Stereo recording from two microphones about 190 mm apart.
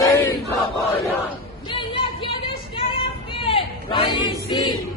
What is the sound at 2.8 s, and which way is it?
Choir, 30° left (ahead or behind).